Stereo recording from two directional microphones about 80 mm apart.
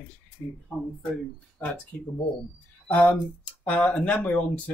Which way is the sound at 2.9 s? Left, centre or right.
Centre.